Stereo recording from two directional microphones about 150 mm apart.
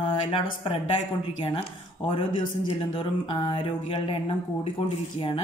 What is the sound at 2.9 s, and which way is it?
Speech, 30° left (ahead or behind).